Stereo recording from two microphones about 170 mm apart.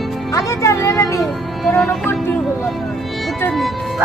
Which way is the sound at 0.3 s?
20° left (ahead or behind).